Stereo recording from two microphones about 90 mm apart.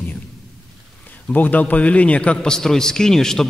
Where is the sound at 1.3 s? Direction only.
20° left (ahead or behind).